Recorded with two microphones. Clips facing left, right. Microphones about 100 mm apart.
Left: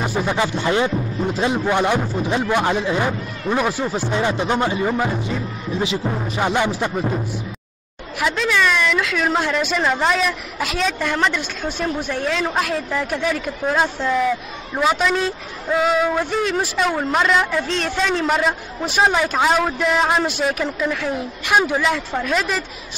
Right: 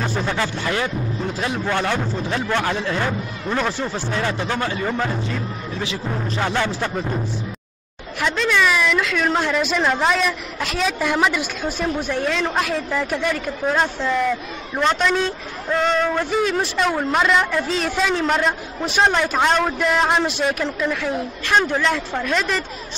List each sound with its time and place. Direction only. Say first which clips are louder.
0.0 s speech: left 2 dB; 10° left (ahead or behind)
8.2 s speech: even; 5° left (ahead or behind)